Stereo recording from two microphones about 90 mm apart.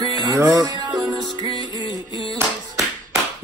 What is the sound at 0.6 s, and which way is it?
Music, 50° right (ahead or behind).